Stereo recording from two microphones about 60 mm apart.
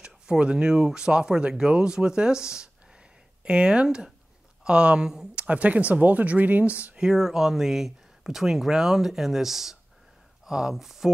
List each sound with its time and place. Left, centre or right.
0.0 s speech: centre
5.4 s speech: right
7.1 s speech: centre